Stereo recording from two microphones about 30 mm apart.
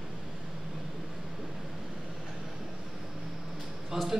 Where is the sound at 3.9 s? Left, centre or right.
Centre.